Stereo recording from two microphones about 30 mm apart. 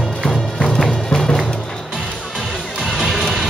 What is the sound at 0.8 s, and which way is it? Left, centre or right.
Music, centre.